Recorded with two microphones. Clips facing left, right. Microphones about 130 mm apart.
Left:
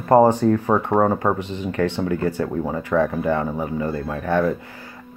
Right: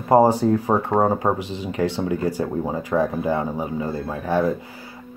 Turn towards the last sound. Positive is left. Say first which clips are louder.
# left 1 dB
turn(degrees=-15)  # may be behind; listen again after turning